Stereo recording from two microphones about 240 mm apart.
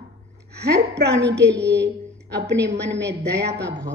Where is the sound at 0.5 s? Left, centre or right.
Right.